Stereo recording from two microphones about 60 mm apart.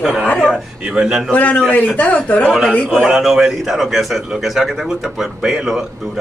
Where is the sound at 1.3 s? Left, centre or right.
Left.